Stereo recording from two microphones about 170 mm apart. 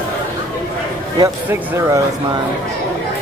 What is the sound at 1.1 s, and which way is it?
Speech, 15° right (ahead or behind).